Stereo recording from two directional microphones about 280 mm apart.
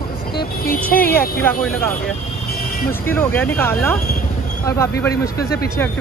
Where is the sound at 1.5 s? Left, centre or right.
Centre.